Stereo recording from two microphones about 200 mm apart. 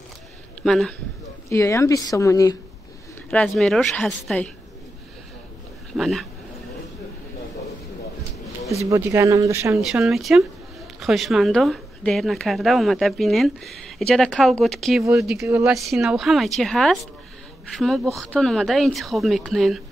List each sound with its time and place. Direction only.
0.7 s speech: centre (ahead or behind)
1.5 s speech: 15° left (ahead or behind)
3.3 s speech: centre (ahead or behind)
5.9 s speech: centre (ahead or behind)
8.8 s speech: 15° right (ahead or behind)
9.8 s speech: centre (ahead or behind)
18.0 s speech: 15° right (ahead or behind)
18.3 s speech: centre (ahead or behind)